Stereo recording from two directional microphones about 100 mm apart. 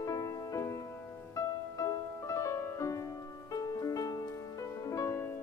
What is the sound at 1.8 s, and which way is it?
Music, 35° left (ahead or behind).